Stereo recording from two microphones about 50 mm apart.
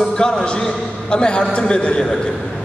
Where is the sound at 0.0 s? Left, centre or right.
Centre.